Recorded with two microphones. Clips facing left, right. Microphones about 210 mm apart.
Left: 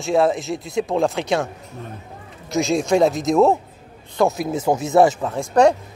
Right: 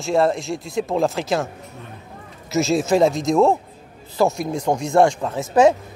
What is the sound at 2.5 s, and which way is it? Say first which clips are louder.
Speech: even; centre (ahead or behind).